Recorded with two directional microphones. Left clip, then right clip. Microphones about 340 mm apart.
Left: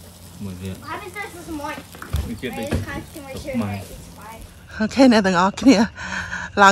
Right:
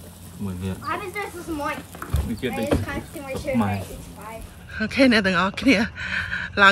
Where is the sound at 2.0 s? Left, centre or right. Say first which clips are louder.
Right 2 dB; centre.